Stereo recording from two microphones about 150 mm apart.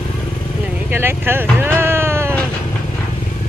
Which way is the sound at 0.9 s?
15° right (ahead or behind).